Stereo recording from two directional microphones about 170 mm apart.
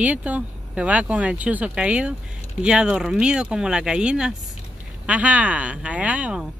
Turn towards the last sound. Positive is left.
turn(degrees=-5)  # may be behind; listen again after turning